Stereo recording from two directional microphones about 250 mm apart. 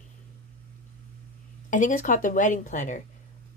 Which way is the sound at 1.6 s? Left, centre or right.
Left.